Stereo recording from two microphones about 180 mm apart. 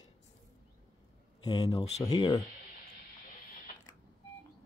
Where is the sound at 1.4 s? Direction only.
20° left (ahead or behind).